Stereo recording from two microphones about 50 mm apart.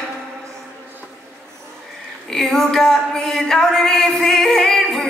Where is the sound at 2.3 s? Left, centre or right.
Centre.